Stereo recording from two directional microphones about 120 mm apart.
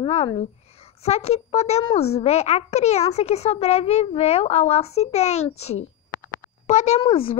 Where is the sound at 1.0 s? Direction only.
60° left (ahead or behind).